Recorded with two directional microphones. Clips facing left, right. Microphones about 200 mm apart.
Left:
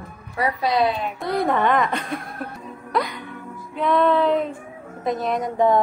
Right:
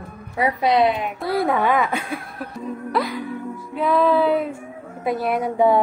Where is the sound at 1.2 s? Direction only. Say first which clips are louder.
Right 1 dB; 5° right (ahead or behind).